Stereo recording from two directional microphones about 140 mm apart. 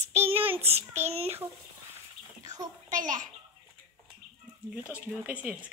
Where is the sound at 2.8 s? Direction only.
65° right (ahead or behind).